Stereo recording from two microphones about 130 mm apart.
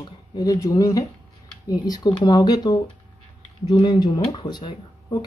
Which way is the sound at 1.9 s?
35° left (ahead or behind).